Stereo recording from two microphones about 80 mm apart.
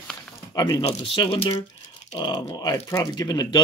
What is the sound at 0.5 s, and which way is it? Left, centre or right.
Speech, left.